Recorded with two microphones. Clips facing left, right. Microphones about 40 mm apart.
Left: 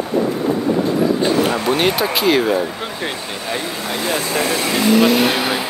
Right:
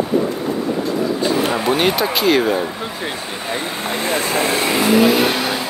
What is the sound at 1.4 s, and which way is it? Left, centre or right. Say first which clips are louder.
Speech: even; centre.